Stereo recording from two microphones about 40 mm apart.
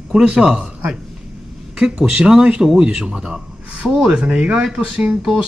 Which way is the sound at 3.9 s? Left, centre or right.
Centre.